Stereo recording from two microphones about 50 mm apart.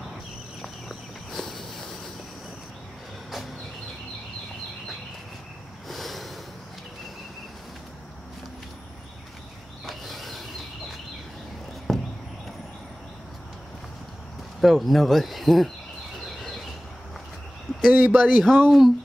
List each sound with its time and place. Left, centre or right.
0.6 s walk: centre
5.9 s a sound: centre
9.8 s mechanisms: centre
11.9 s a sound: centre
14.6 s speech: centre
17.9 s speech: right
18.3 s speech: centre
18.7 s speech: centre